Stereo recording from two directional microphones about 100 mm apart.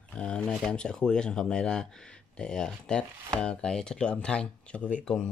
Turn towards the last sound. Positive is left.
turn(degrees=10)  # may be behind; listen again after turning